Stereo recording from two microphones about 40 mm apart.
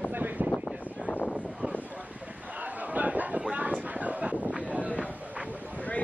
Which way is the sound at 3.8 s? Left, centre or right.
Right.